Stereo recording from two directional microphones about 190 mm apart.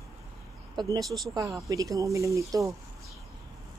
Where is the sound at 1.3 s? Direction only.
15° right (ahead or behind).